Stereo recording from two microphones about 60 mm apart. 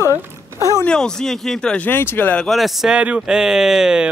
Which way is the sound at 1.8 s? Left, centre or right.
Left.